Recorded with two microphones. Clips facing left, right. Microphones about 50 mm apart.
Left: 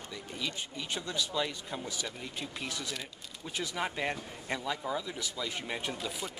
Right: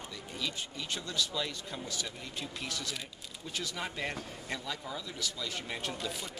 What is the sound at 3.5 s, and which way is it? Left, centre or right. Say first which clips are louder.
Speech: left 4 dB; centre.